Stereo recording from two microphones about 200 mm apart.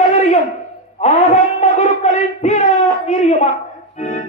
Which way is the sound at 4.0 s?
35° left (ahead or behind).